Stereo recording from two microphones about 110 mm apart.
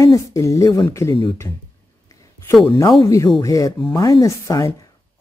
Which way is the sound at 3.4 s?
30° left (ahead or behind).